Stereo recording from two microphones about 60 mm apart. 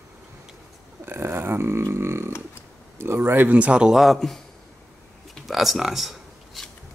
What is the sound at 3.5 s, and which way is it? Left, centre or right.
Speech, right.